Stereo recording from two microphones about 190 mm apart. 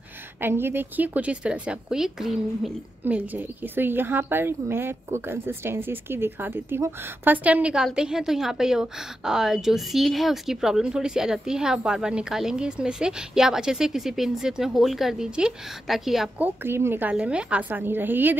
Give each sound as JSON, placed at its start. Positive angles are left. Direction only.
{"t": 0.4, "sound": "a woman's voice", "side_deg": -10}